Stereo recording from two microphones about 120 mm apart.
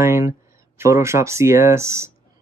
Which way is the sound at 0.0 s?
20° right (ahead or behind).